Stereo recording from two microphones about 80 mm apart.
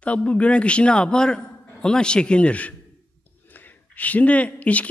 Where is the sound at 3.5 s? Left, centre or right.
Left.